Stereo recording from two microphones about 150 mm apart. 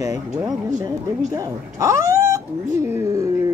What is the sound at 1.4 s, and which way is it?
Speech, 20° right (ahead or behind).